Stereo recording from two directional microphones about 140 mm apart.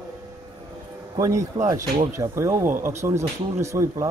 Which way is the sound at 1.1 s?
25° right (ahead or behind).